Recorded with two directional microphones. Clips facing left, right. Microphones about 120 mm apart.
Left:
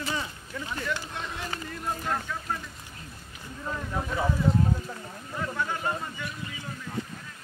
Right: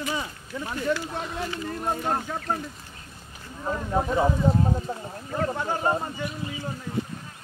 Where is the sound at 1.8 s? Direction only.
35° right (ahead or behind).